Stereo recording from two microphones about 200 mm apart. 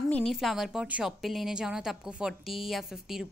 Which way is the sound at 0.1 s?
Centre (ahead or behind).